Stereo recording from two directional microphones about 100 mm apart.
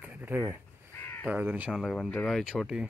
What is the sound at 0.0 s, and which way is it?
Speech, 15° right (ahead or behind).